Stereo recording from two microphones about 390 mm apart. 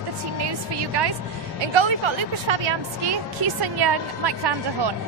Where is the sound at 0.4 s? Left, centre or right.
Right.